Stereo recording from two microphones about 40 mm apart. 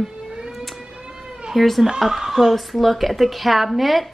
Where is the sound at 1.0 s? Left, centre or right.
Right.